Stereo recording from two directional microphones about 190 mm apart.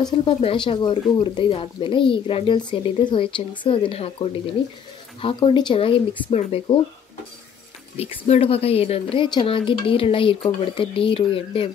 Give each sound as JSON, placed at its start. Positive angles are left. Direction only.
{"t": 0.0, "sound": "speech", "side_deg": 25}
{"t": 8.0, "sound": "speech", "side_deg": 30}